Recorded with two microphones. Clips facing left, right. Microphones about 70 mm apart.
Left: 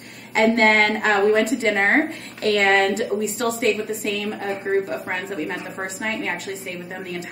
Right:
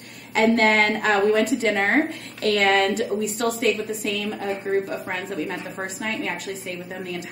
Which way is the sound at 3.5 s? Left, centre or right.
Left.